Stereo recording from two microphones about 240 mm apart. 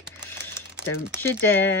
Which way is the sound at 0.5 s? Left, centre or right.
Centre.